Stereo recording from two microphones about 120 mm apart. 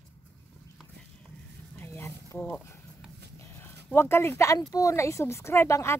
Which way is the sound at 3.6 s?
20° left (ahead or behind).